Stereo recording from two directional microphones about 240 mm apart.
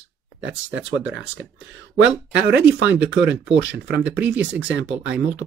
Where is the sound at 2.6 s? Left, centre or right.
Centre.